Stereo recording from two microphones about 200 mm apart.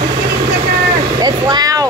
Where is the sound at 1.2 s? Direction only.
20° right (ahead or behind).